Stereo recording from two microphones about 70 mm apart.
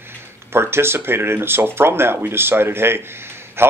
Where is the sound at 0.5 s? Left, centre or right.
Right.